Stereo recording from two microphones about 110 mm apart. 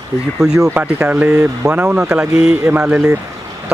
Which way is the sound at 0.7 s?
15° right (ahead or behind).